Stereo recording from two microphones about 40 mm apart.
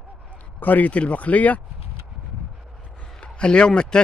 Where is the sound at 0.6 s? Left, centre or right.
Left.